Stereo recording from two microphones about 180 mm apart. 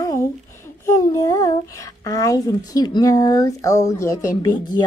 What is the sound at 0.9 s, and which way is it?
A child's voice, 20° left (ahead or behind).